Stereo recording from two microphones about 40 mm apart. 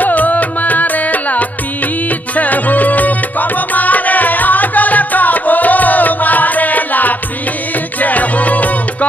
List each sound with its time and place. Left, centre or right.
0.0 s music: left